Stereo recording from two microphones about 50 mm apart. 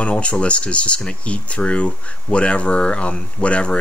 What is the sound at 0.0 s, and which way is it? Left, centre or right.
Speech, left.